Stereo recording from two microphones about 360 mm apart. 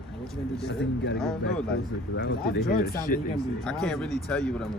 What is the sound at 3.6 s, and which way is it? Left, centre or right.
A man's voice, centre.